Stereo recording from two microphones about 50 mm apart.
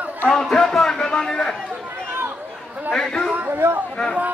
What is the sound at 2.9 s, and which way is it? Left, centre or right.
Chatter, centre.